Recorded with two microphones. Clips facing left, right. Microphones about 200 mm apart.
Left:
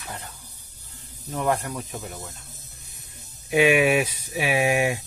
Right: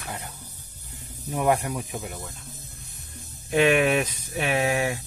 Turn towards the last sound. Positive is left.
turn(degrees=15)  # may be behind; listen again after turning